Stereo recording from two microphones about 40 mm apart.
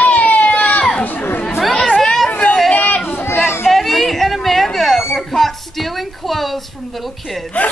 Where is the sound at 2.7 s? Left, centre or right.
Left.